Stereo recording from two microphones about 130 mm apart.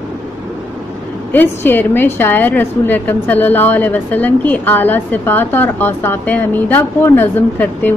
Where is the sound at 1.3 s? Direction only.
15° left (ahead or behind).